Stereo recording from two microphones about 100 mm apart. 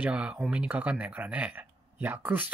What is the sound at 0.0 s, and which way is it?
Speech, 15° right (ahead or behind).